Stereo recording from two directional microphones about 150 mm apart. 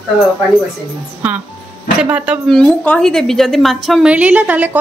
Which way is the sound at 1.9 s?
10° right (ahead or behind).